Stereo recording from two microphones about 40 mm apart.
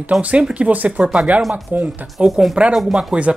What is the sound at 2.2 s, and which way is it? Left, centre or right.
Speech, right.